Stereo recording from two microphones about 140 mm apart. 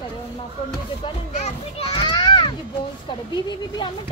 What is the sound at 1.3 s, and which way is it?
Children playing, 50° left (ahead or behind).